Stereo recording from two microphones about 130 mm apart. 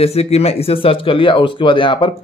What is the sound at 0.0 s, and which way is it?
Speech, 50° left (ahead or behind).